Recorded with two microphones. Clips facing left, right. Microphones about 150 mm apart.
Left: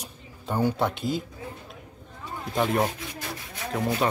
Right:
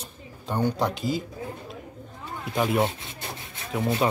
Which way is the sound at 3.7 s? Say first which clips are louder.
Right 1 dB; 5° right (ahead or behind).